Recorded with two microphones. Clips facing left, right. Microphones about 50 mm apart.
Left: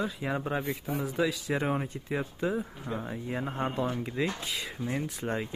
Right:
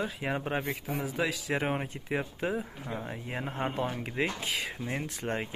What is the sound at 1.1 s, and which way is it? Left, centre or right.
Speech, right.